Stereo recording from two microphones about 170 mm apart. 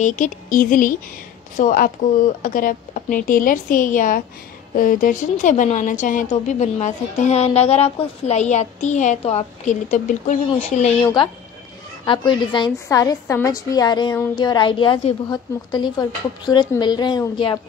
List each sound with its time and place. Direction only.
0.0 s a woman's voice: 45° left (ahead or behind)
11.0 s a woman's voice: 25° left (ahead or behind)